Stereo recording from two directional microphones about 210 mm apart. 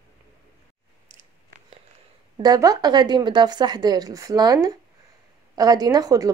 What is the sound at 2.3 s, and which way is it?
A woman's voice, 20° right (ahead or behind).